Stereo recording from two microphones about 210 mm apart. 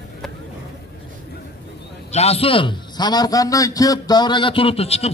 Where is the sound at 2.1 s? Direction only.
30° left (ahead or behind).